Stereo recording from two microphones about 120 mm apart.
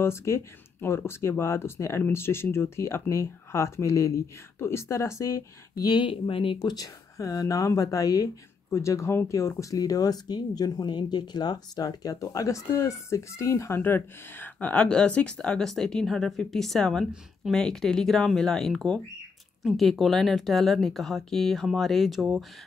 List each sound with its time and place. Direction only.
0.0 s speech: 20° left (ahead or behind); by 6.7 s 45° left (ahead or behind)
6.7 s speech: 30° left (ahead or behind); by 22.4 s 5° right (ahead or behind)